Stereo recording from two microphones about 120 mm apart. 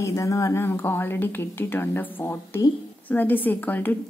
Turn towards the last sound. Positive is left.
turn(degrees=15)  # may be behind; listen again after turning